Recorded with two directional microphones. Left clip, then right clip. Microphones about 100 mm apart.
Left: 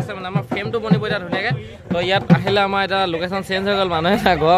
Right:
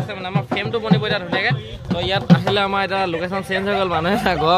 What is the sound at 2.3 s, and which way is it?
Speech, 40° left (ahead or behind).